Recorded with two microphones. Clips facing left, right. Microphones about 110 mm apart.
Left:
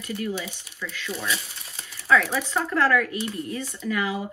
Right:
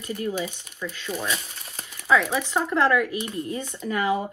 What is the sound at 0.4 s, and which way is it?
Speech, 30° right (ahead or behind).